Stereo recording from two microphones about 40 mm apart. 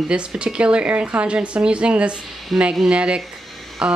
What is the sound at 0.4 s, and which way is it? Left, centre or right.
Speech, right.